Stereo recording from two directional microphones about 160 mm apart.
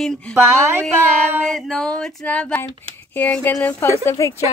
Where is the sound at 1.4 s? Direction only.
5° left (ahead or behind).